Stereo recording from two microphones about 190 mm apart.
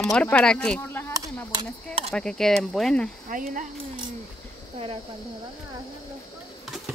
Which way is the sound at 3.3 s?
45° right (ahead or behind).